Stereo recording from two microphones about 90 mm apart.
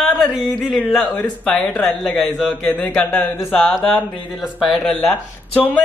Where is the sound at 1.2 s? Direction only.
15° left (ahead or behind).